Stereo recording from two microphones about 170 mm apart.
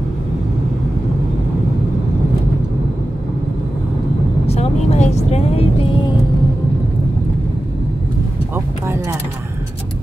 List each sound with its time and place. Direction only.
4.5 s vehicle: 40° left (ahead or behind)